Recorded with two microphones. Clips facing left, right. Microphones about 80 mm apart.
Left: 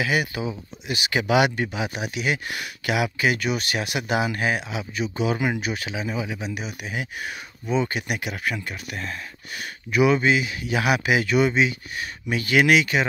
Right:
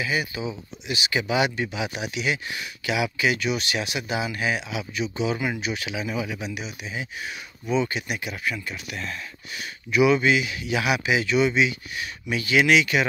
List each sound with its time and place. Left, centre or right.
0.0 s speech: left
6.4 s speech: left
6.8 s speech: left
7.7 s speech: left
8.1 s speech: left
8.5 s speech: left